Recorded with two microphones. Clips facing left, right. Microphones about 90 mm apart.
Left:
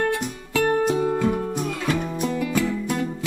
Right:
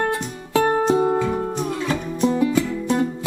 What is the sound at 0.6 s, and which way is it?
Music, 30° right (ahead or behind).